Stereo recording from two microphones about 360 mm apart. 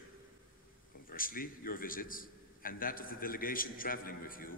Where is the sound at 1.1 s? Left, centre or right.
Left.